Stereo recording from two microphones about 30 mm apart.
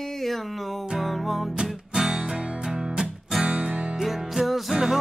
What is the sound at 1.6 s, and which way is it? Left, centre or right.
Music, centre.